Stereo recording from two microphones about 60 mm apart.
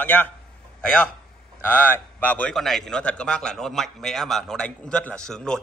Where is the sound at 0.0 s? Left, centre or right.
Left.